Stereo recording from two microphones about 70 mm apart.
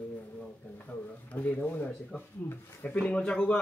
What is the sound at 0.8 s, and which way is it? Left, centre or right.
Speech, left.